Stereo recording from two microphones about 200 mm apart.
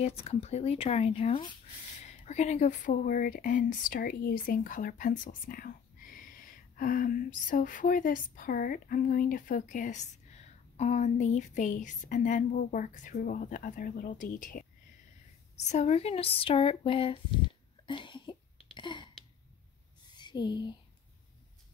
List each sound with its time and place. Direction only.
0.2 s speech: 30° left (ahead or behind)
15.6 s speech: 35° left (ahead or behind)
17.8 s cough: 25° left (ahead or behind)
18.8 s a sound: 25° left (ahead or behind)